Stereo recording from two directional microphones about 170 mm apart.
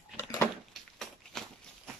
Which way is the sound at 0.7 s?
Centre (ahead or behind).